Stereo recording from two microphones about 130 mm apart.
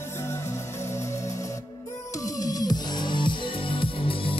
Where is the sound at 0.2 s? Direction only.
20° left (ahead or behind).